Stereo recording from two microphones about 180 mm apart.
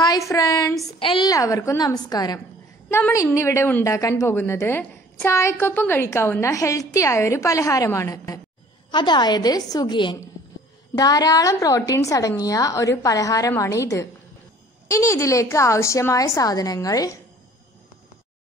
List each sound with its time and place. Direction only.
0.0 s a woman's voice: 20° left (ahead or behind)